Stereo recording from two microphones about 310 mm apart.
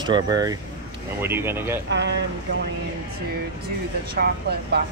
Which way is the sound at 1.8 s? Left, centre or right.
Right.